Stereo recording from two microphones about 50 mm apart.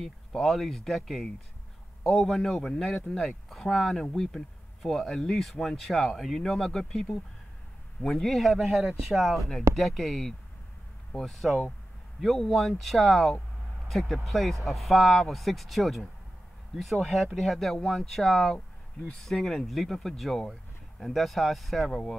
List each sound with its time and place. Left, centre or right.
0.0 s speech: centre
3.4 s speech: centre